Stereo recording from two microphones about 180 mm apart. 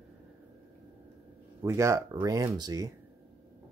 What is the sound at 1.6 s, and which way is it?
Speech, 15° right (ahead or behind).